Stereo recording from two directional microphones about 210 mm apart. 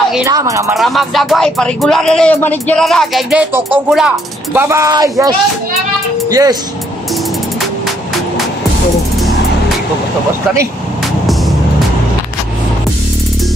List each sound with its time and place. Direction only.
0.2 s speech: 15° right (ahead or behind)
0.7 s speech: centre (ahead or behind); by 6.5 s 15° right (ahead or behind)
11.2 s vehicle: centre (ahead or behind)